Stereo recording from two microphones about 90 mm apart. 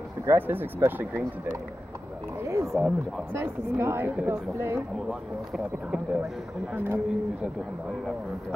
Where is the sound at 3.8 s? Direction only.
30° right (ahead or behind).